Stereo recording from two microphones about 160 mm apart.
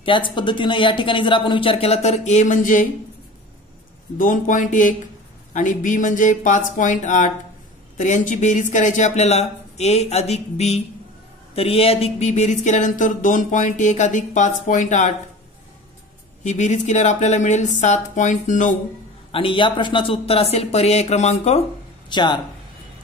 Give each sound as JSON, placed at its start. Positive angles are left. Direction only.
{"t": 0.0, "sound": "speech", "side_deg": 30}
{"t": 4.2, "sound": "speech", "side_deg": 55}
{"t": 16.4, "sound": "speech", "side_deg": 50}
{"t": 19.3, "sound": "speech", "side_deg": 30}
{"t": 22.1, "sound": "speech", "side_deg": 30}